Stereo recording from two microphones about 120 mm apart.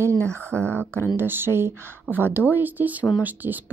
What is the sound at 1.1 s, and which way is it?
A woman's voice, 20° right (ahead or behind).